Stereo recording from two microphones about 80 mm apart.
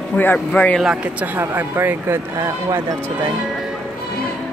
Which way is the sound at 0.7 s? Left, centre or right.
Centre.